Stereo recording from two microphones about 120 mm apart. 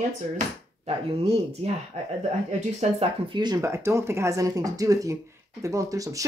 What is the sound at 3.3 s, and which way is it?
Speech, 35° right (ahead or behind).